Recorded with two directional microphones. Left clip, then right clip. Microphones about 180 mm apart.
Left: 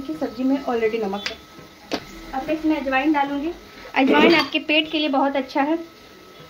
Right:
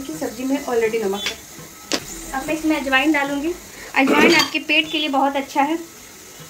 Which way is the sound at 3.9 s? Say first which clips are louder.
Right 1 dB; 50° left (ahead or behind).